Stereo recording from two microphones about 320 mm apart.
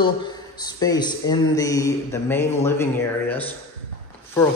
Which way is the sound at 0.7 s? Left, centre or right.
Centre.